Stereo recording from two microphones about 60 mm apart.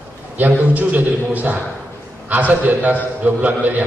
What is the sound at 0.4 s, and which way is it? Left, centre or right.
A man's voice, right.